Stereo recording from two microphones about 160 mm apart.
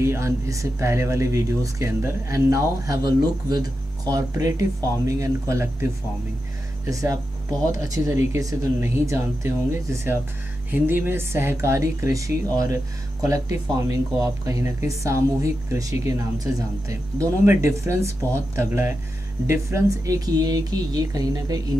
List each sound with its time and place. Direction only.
0.0 s speech: 15° right (ahead or behind)
6.9 s speech: 20° right (ahead or behind)